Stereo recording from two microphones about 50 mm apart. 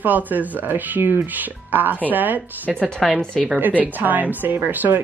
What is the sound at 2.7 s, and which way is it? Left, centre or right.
Speech, centre.